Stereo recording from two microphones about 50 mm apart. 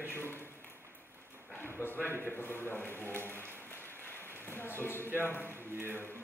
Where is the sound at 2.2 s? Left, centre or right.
Left.